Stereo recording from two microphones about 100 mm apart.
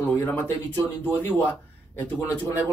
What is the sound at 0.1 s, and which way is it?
Speech, 20° left (ahead or behind).